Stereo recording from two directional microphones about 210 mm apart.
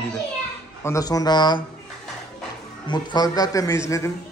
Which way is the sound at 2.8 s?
20° left (ahead or behind).